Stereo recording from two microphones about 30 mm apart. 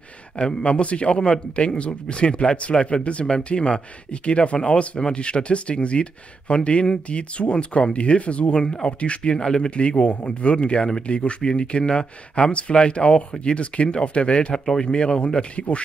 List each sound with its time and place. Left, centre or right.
0.4 s speech: left
3.3 s speech: left
8.5 s speech: left
14.5 s speech: centre
14.9 s speech: left